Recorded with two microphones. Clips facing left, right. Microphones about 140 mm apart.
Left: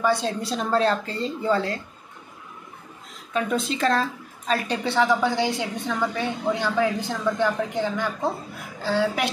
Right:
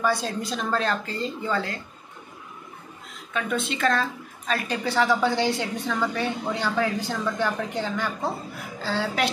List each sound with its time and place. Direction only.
0.0 s a woman's voice: 25° left (ahead or behind)
3.5 s a woman's voice: 35° left (ahead or behind)
4.9 s a woman's voice: 15° left (ahead or behind)